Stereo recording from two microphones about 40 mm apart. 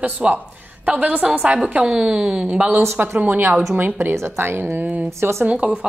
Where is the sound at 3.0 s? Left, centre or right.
Right.